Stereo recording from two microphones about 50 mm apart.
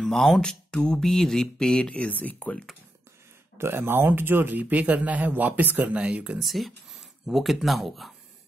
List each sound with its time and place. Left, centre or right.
0.0 s speech: centre; by 2.5 s left
3.5 s speech: right
5.9 s speech: right
6.4 s speech: centre